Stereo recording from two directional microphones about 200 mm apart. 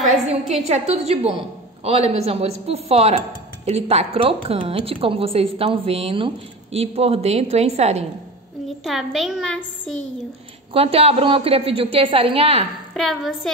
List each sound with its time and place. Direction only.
0.1 s a woman's voice: 30° right (ahead or behind)
8.8 s a woman's voice: centre (ahead or behind)
10.7 s a woman's voice: 30° right (ahead or behind)
12.9 s a woman's voice: centre (ahead or behind)